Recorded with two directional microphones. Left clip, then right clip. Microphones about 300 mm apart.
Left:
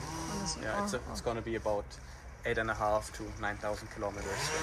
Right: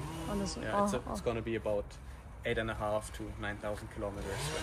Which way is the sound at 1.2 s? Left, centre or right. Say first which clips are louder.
Left 2 dB; centre.